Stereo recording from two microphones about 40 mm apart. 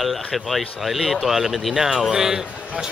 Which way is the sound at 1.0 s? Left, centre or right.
Centre.